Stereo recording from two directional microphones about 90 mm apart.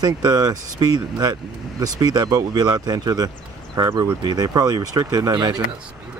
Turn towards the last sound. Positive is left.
turn(degrees=-45)  # may be behind; listen again after turning